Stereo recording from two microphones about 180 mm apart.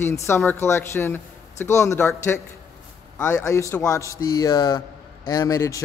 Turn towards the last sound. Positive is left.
turn(degrees=15)  # may be behind; listen again after turning